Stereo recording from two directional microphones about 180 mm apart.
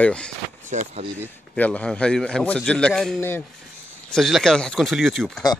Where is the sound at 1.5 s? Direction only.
5° left (ahead or behind).